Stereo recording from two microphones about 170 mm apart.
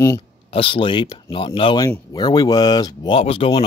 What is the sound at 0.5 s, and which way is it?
Speech, 30° left (ahead or behind).